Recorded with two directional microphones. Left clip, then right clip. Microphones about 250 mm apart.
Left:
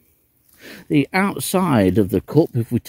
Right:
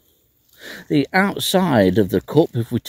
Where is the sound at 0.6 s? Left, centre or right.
Left.